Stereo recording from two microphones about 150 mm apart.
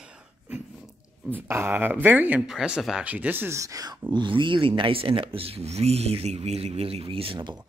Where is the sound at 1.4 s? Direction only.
15° right (ahead or behind).